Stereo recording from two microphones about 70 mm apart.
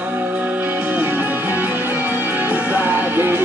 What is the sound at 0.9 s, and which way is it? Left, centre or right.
Music, right.